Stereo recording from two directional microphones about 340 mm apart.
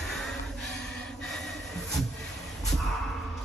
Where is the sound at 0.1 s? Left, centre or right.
Centre.